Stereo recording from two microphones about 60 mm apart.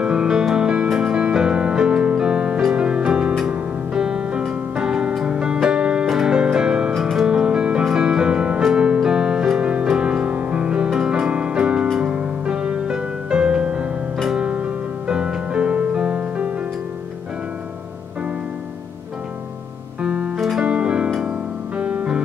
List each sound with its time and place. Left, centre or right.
0.0 s music: centre
14.4 s music: centre
20.0 s music: centre